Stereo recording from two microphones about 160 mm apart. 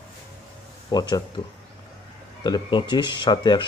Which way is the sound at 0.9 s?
25° left (ahead or behind).